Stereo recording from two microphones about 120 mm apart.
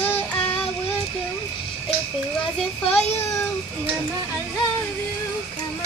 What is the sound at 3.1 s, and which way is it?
Speech, 20° left (ahead or behind).